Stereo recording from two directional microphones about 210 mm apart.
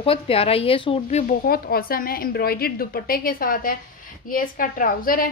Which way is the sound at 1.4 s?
45° left (ahead or behind).